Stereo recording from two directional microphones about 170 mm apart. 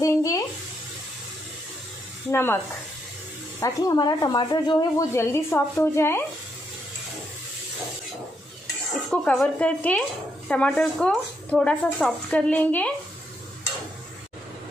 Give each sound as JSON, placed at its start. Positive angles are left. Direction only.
{"t": 0.0, "sound": "a sound", "side_deg": 20}
{"t": 2.3, "sound": "a woman's voice", "side_deg": 15}
{"t": 9.1, "sound": "speech", "side_deg": 0}